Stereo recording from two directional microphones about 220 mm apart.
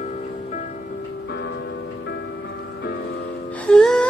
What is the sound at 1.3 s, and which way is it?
Music, 50° left (ahead or behind).